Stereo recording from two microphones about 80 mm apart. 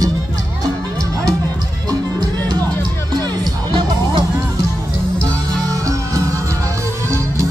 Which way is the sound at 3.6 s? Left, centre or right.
Right.